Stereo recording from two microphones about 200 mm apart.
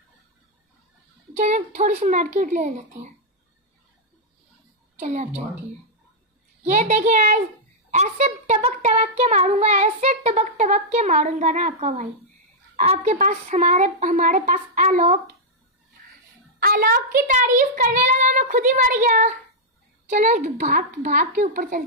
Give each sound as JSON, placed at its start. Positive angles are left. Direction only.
{"t": 1.3, "sound": "child singing", "side_deg": -35}
{"t": 4.9, "sound": "child singing", "side_deg": -35}
{"t": 6.6, "sound": "child singing", "side_deg": -35}
{"t": 16.5, "sound": "child singing", "side_deg": -45}